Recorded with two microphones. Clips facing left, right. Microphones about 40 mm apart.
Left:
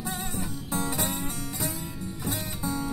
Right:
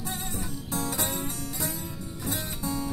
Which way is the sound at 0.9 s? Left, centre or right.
Centre.